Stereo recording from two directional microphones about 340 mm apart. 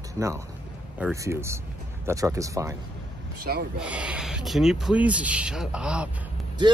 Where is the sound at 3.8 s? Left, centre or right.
Centre.